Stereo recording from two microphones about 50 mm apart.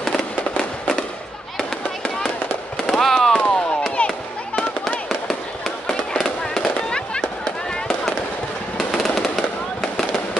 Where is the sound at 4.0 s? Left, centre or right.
Centre.